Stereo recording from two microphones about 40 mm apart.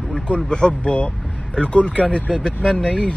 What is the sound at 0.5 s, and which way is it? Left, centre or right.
Speech, left.